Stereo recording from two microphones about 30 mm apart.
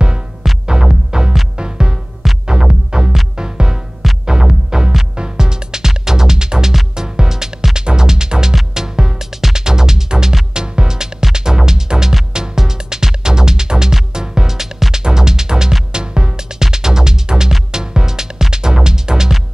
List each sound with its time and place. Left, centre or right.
0.0 s music: right
2.2 s music: centre
2.7 s music: right